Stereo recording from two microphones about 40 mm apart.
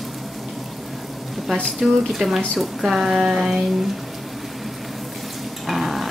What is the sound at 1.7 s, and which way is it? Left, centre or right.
Speech, centre.